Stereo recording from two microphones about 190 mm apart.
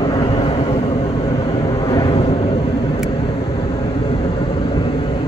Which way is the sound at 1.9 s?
20° left (ahead or behind).